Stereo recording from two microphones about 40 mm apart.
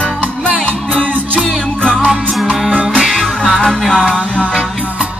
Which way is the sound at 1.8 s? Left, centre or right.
Left.